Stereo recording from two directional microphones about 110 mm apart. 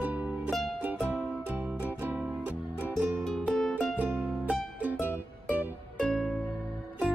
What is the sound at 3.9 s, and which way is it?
Music, 15° right (ahead or behind).